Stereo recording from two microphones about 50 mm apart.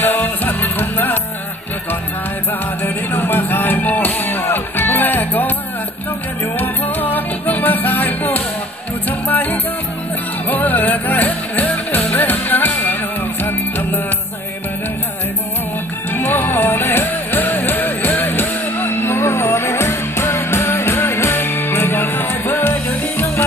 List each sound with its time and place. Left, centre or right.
0.0 s music: left
2.8 s music: left
6.6 s music: left
16.1 s music: left